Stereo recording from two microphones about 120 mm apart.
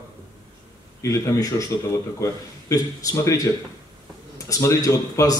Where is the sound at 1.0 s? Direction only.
30° left (ahead or behind).